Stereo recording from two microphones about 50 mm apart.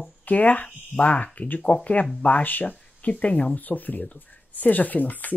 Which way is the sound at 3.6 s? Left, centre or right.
Left.